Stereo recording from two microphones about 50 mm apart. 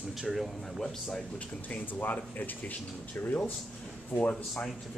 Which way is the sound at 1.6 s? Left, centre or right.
Left.